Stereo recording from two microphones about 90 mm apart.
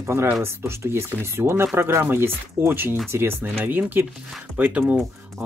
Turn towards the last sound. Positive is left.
turn(degrees=-15)  # may be behind; listen again after turning